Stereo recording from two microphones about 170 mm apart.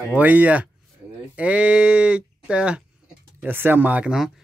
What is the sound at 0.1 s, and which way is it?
Speech, 10° right (ahead or behind).